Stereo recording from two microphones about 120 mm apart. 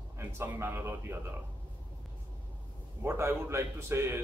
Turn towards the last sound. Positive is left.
turn(degrees=-20)  # may be behind; listen again after turning